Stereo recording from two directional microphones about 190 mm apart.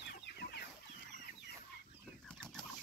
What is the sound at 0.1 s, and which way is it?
Chicken, 60° left (ahead or behind).